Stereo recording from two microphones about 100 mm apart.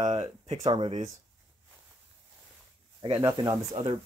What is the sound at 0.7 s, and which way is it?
Speech, 55° right (ahead or behind).